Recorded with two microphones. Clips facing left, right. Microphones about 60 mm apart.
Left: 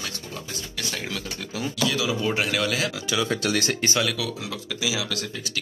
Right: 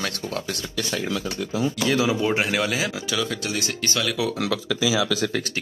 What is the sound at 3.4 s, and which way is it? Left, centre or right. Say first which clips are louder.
Speech: left 3 dB; left.